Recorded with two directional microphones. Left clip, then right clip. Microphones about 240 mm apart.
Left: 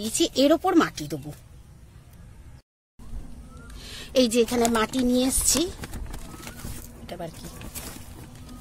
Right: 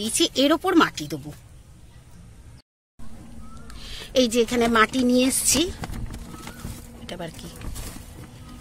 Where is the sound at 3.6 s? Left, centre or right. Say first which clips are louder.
Right 2 dB; centre.